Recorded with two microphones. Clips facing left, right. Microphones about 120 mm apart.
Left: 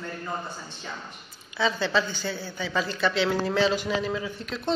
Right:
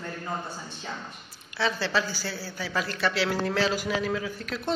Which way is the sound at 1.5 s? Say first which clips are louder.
Left 2 dB; centre (ahead or behind).